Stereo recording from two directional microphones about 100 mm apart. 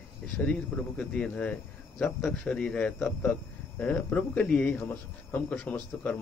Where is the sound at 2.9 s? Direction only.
20° left (ahead or behind).